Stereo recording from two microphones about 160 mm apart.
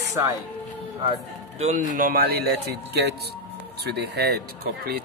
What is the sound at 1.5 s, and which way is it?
Speech, 50° right (ahead or behind).